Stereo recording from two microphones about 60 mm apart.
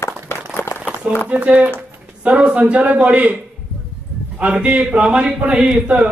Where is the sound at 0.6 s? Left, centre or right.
Left.